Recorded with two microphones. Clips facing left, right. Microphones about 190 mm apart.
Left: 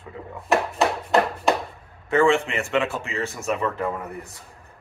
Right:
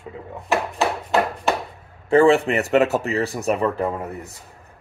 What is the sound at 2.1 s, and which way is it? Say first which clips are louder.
Speech: right 5 dB; 35° right (ahead or behind).